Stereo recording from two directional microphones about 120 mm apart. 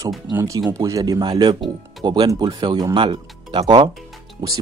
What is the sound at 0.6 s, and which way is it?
Speech, 30° right (ahead or behind).